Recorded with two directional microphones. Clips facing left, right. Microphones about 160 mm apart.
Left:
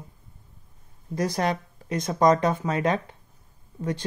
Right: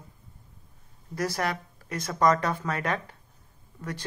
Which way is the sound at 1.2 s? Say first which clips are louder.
Left 4 dB; 20° left (ahead or behind).